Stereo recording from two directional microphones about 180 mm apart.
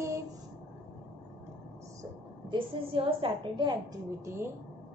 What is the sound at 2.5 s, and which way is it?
A woman's voice, 30° right (ahead or behind).